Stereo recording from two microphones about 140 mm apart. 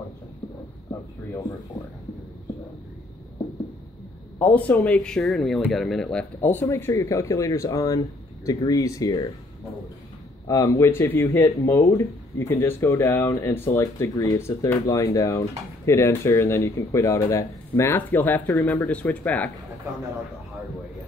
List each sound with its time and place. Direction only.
4.4 s speech: 10° left (ahead or behind)
10.4 s speech: 25° left (ahead or behind)